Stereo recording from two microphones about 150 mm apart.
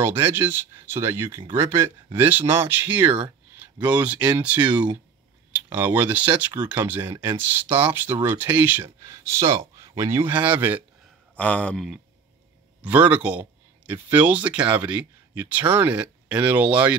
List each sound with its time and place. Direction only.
0.0 s speech: 15° right (ahead or behind)
11.3 s speech: 10° left (ahead or behind)
12.8 s speech: 10° right (ahead or behind)